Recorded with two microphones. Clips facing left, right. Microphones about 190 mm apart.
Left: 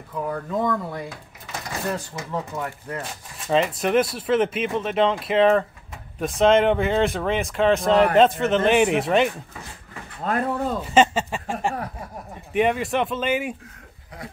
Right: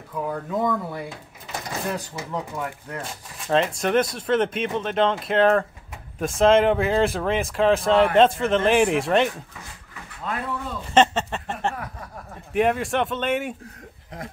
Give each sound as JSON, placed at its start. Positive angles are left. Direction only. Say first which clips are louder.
{"t": 0.1, "sound": "speech", "louder": "even", "side_deg": -5}
{"t": 2.5, "sound": "speech", "louder": "left 1 dB", "side_deg": 5}
{"t": 10.2, "sound": "speech", "louder": "left 6 dB", "side_deg": 45}
{"t": 10.9, "sound": "speech", "louder": "right 1 dB", "side_deg": 5}
{"t": 12.5, "sound": "speech", "louder": "even", "side_deg": 0}